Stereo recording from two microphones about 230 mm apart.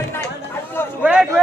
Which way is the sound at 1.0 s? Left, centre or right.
Centre.